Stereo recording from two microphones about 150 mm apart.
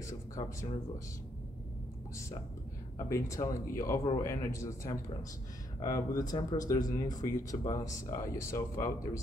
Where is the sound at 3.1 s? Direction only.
20° left (ahead or behind).